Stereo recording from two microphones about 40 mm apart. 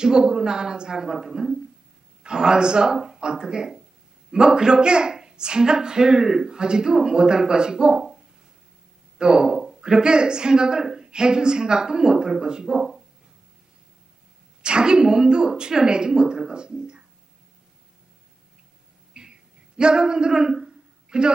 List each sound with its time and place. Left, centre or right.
0.0 s a woman's voice: centre
9.2 s speech: centre
14.6 s a woman's voice: right
19.1 s a sound: right
19.8 s speech: right